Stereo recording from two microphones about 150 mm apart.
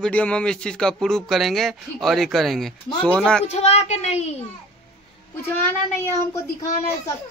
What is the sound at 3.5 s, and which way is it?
Speech, 45° left (ahead or behind).